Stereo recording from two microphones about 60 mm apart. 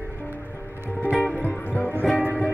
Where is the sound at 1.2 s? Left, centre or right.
Left.